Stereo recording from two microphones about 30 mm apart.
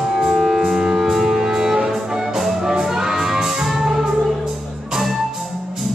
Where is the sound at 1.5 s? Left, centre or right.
Right.